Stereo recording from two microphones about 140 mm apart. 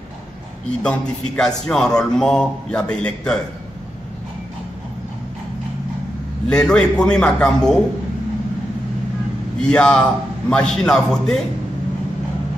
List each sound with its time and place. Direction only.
0.7 s a man's voice: 5° left (ahead or behind)
6.4 s a man's voice: 5° left (ahead or behind)
9.6 s a man's voice: 5° left (ahead or behind)